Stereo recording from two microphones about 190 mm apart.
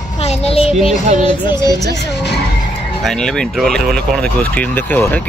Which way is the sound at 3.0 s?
5° left (ahead or behind).